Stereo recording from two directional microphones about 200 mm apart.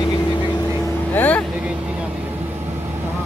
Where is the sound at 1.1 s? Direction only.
10° left (ahead or behind).